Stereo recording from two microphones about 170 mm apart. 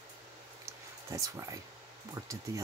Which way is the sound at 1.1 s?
15° right (ahead or behind).